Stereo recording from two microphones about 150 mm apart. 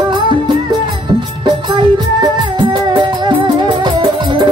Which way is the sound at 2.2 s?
30° right (ahead or behind).